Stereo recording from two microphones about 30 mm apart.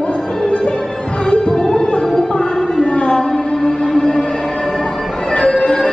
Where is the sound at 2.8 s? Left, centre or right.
Left.